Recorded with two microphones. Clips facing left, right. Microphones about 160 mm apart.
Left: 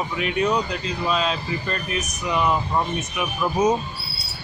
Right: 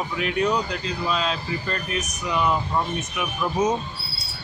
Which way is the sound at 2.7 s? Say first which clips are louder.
Left 2 dB; 20° left (ahead or behind).